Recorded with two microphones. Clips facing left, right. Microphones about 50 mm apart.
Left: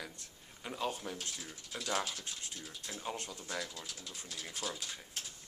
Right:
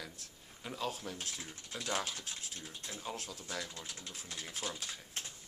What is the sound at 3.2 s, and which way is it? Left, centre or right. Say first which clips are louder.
Speech: left 1 dB; centre.